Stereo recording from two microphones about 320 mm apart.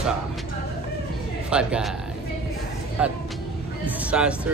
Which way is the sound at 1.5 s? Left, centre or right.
Centre.